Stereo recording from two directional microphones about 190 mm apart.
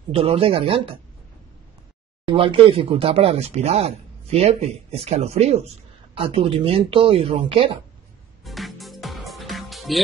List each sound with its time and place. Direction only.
0.1 s speech: 30° right (ahead or behind)
2.2 s speech: 25° right (ahead or behind)
8.5 s music: centre (ahead or behind)